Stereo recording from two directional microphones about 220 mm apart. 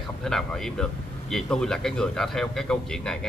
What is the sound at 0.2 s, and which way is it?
A man's voice, centre (ahead or behind).